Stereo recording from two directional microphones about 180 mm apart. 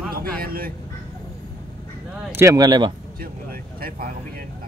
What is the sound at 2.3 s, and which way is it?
Speech, 15° right (ahead or behind).